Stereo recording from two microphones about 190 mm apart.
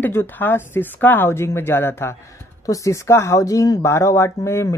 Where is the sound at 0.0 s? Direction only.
10° left (ahead or behind).